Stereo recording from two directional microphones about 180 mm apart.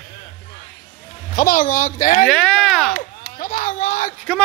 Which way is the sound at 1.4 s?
50° left (ahead or behind).